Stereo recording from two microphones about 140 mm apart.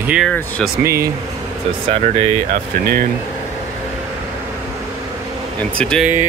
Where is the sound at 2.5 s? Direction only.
85° right.